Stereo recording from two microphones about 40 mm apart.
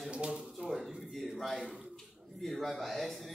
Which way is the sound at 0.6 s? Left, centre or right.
Centre.